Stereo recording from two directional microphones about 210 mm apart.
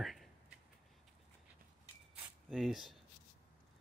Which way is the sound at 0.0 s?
Centre (ahead or behind).